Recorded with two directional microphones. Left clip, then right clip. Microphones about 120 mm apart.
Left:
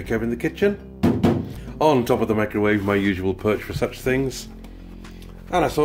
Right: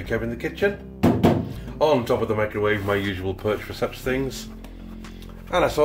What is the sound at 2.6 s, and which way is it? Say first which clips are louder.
Speech: left 4 dB; 85° left.